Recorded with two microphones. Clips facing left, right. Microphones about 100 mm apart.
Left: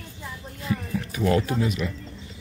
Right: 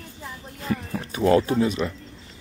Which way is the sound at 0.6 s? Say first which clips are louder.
Even; 40° right (ahead or behind).